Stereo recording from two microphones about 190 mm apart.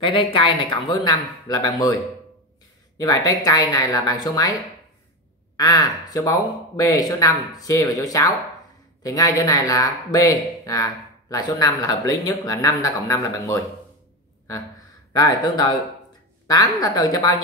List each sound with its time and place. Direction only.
0.0 s speech: 30° left (ahead or behind)
3.0 s speech: 20° left (ahead or behind)
5.6 s speech: 20° left (ahead or behind)
15.1 s speech: 20° left (ahead or behind)